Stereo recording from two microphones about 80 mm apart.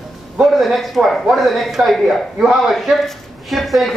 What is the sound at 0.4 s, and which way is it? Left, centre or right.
Speech, centre.